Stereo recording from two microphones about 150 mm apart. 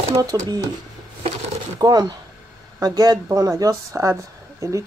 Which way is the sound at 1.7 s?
25° right (ahead or behind).